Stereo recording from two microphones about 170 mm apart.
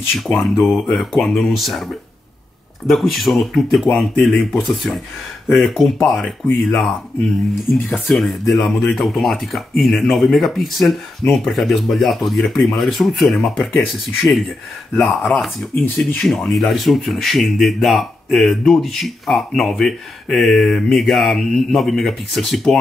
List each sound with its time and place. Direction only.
0.3 s speech: 5° left (ahead or behind)
7.9 s speech: centre (ahead or behind)
15.7 s speech: 10° left (ahead or behind)